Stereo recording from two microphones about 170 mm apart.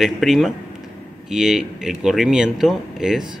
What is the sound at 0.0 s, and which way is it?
Speech, centre (ahead or behind).